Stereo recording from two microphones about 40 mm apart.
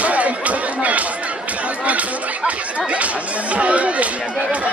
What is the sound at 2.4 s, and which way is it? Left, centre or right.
Chatter, right.